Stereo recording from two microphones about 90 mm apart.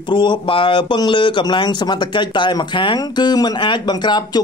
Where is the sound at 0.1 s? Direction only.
60° left (ahead or behind).